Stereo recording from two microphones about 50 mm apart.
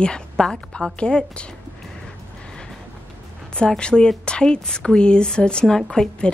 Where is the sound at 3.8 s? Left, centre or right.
Centre.